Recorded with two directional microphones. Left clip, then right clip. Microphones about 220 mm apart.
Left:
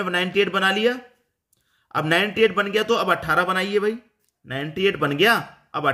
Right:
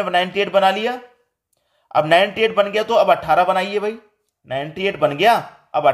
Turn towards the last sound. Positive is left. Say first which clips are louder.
# right 7 dB
turn(degrees=20)  # may be behind; listen again after turning